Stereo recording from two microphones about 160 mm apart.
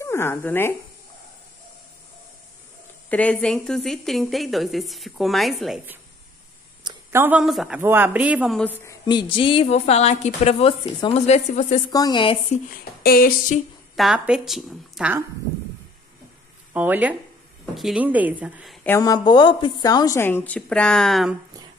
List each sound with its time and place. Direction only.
0.0 s speech: 15° left (ahead or behind)
3.1 s a woman's voice: 10° left (ahead or behind)
7.1 s a woman's voice: 10° right (ahead or behind)
8.5 s a woman's voice: 5° left (ahead or behind)
8.8 s a woman's voice: 25° left (ahead or behind); by 11.8 s 45° left (ahead or behind)
11.9 s speech: 25° left (ahead or behind)
12.6 s speech: 65° left (ahead or behind)
13.9 s a woman's voice: 5° right (ahead or behind)
16.7 s a woman's voice: 10° right (ahead or behind)
18.9 s a woman's voice: 20° left (ahead or behind); by 21.4 s centre (ahead or behind)